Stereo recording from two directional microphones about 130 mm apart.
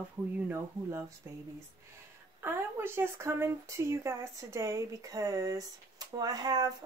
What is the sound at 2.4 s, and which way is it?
Speech, 20° right (ahead or behind).